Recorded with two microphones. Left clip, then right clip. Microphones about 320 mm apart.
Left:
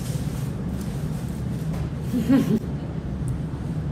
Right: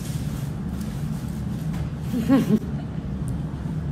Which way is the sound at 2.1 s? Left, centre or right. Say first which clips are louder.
Even; centre.